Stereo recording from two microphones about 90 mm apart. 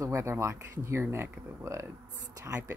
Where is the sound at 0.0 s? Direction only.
30° right (ahead or behind).